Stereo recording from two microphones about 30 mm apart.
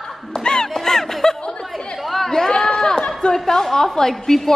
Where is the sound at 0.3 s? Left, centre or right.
Left.